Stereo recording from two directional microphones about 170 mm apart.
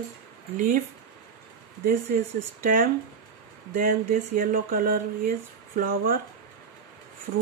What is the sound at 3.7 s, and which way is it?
Speech, 50° right (ahead or behind).